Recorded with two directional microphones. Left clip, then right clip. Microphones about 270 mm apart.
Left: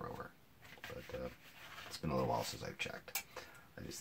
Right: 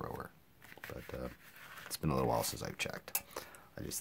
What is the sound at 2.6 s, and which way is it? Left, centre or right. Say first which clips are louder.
Speech: right 3 dB; right.